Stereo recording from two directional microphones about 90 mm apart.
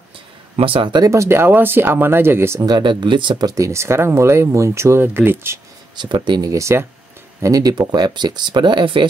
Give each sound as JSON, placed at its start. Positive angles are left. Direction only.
{"t": 0.6, "sound": "speech", "side_deg": -75}
{"t": 1.0, "sound": "speech", "side_deg": -35}
{"t": 2.6, "sound": "speech", "side_deg": -55}
{"t": 5.9, "sound": "speech", "side_deg": -60}
{"t": 6.5, "sound": "speech", "side_deg": -30}
{"t": 7.4, "sound": "speech", "side_deg": -40}